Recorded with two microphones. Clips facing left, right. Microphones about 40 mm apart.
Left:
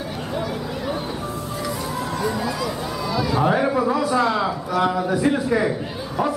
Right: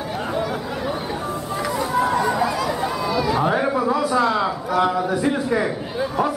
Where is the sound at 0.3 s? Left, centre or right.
Centre.